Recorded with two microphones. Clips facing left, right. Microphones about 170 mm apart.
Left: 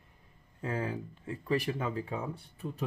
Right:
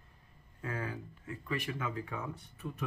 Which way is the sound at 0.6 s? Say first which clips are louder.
Left 5 dB; 30° left (ahead or behind).